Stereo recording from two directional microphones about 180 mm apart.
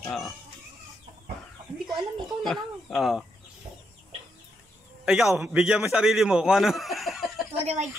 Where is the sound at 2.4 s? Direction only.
Centre (ahead or behind).